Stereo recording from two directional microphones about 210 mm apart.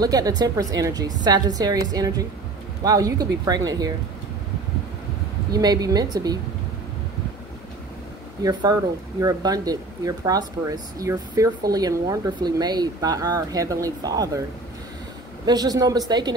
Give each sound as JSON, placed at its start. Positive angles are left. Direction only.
{"t": 0.0, "sound": "speech", "side_deg": -20}
{"t": 5.5, "sound": "a woman's voice", "side_deg": -20}
{"t": 8.4, "sound": "speech", "side_deg": -20}
{"t": 15.4, "sound": "a woman's voice", "side_deg": -20}